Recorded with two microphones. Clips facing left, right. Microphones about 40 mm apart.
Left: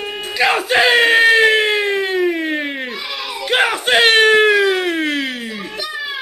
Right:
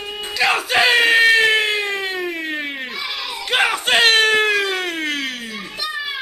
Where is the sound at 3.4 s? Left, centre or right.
Centre.